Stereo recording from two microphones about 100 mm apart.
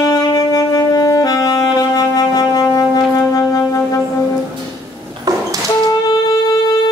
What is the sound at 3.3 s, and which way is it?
Wind instrument, 35° left (ahead or behind).